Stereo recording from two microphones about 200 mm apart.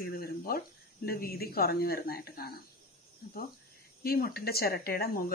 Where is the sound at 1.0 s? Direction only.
50° left (ahead or behind).